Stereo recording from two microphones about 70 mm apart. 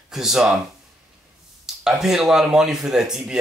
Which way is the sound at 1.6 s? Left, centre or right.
Centre.